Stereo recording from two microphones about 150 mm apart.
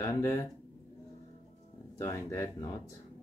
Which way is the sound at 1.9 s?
20° left (ahead or behind).